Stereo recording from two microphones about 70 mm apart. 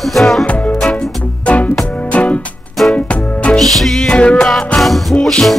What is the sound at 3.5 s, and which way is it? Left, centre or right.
Music, centre.